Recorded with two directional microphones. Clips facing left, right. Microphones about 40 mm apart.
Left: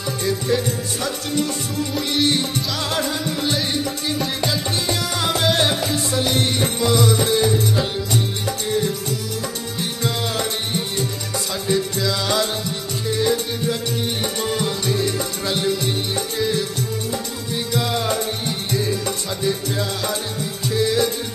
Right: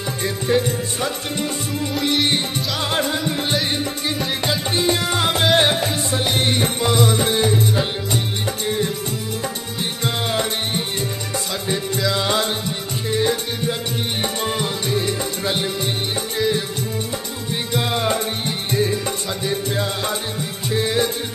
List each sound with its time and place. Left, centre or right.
0.2 s music: right
10.0 s music: right
12.1 s music: right
17.6 s music: right